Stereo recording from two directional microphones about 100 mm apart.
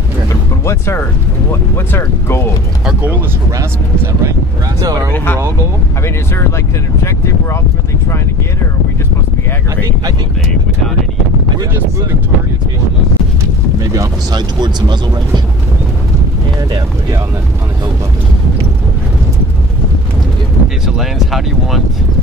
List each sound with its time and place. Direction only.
0.7 s speech: 25° left (ahead or behind)
2.8 s speech: 10° right (ahead or behind)
3.5 s speech: 30° right (ahead or behind)
5.1 s speech: 20° left (ahead or behind)
13.9 s speech: 45° right (ahead or behind)
20.6 s speech: centre (ahead or behind)